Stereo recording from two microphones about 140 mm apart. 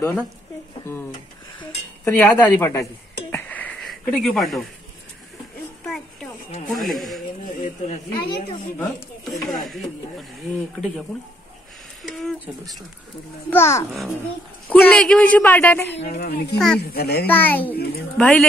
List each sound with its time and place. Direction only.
2.0 s speech: 15° left (ahead or behind)
6.7 s a sound: centre (ahead or behind)
7.6 s speech: 75° left (ahead or behind)
9.2 s a sound: centre (ahead or behind)
12.0 s a sound: centre (ahead or behind)
13.5 s speech: 20° left (ahead or behind)
16.1 s a child's voice: 90° left
16.5 s speech: 5° left (ahead or behind)
16.8 s a child's voice: 90° left
17.3 s speech: 15° left (ahead or behind)